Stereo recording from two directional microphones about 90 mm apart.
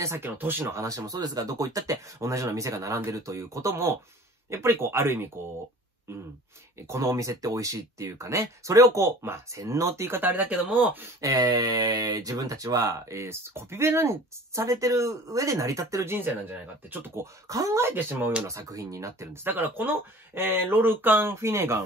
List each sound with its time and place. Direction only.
0.0 s speech: 25° right (ahead or behind)
0.7 s speech: 40° right (ahead or behind)
6.9 s speech: 35° right (ahead or behind); by 11.1 s 20° right (ahead or behind)
11.1 s speech: 40° right (ahead or behind); by 18.4 s 25° right (ahead or behind)
18.5 s speech: 40° right (ahead or behind)